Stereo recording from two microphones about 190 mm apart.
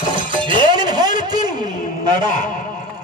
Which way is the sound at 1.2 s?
20° right (ahead or behind).